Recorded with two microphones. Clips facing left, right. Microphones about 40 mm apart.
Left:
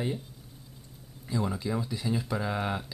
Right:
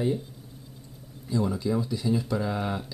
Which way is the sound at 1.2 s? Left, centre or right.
Centre.